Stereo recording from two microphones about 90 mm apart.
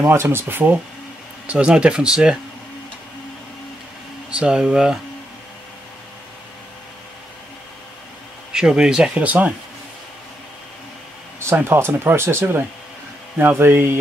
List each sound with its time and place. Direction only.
0.0 s speech: 25° right (ahead or behind)
1.5 s speech: 10° right (ahead or behind)
4.3 s speech: 10° right (ahead or behind)
8.5 s speech: 10° right (ahead or behind)
11.3 s speech: 25° right (ahead or behind)